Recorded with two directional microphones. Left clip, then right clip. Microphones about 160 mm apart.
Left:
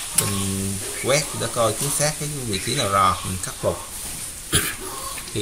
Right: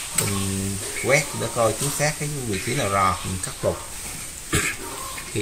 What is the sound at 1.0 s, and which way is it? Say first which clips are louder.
Speech: right 1 dB; 20° right (ahead or behind).